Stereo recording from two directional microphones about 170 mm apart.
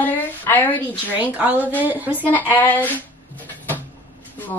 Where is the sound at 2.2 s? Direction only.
10° left (ahead or behind).